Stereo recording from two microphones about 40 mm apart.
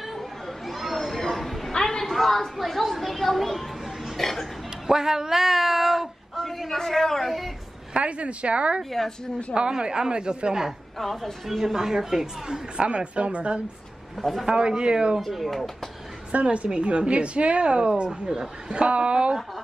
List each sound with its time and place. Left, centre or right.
0.7 s a sound: centre
1.7 s a sound: centre
4.2 s speech: centre
4.8 s a woman's voice: centre
7.9 s a woman's voice: right
11.0 s speech: centre
11.4 s speech: centre; by 13.6 s right
14.4 s a woman's voice: centre
15.1 s speech: centre
16.3 s a woman's voice: right; by 18.5 s centre
18.7 s a woman's voice: right